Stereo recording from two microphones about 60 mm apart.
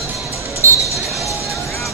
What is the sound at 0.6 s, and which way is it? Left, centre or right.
Basketball bounce, right.